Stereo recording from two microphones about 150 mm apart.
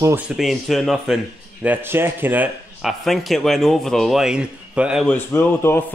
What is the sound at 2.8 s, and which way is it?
Speech, centre (ahead or behind).